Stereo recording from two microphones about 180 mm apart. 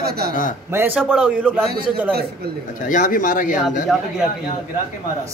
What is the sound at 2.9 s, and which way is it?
Speech, 45° left (ahead or behind).